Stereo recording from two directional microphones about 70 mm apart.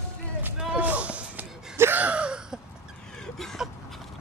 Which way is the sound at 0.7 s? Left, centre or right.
Right.